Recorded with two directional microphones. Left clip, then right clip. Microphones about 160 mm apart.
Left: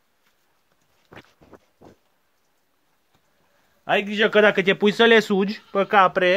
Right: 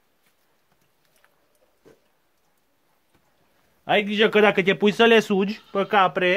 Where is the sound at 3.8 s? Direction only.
25° left (ahead or behind).